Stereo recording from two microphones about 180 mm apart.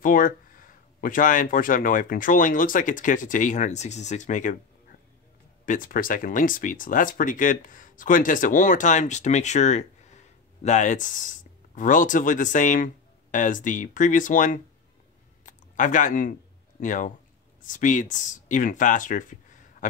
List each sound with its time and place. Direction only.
0.0 s speech: 50° left (ahead or behind)
5.7 s speech: 50° left (ahead or behind)
15.4 s a sound: 45° left (ahead or behind)
16.8 s speech: 45° left (ahead or behind)